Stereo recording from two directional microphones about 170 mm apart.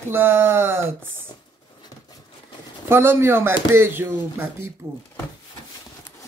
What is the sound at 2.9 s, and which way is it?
Speech, 15° right (ahead or behind).